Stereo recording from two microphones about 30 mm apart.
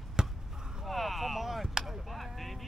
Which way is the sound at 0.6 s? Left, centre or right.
Centre.